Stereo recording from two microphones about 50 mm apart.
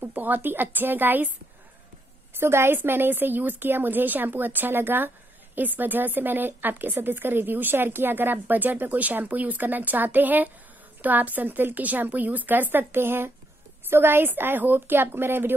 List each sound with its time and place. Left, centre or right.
0.0 s a woman's voice: right
2.3 s a woman's voice: right